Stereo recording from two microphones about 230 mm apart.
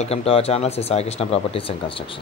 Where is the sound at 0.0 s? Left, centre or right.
Left.